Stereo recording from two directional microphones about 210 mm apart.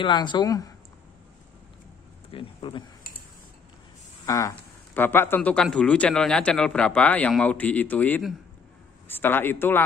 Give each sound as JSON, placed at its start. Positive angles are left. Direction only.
{"t": 0.0, "sound": "speech", "side_deg": 20}
{"t": 2.3, "sound": "speech", "side_deg": 25}
{"t": 4.3, "sound": "speech", "side_deg": 15}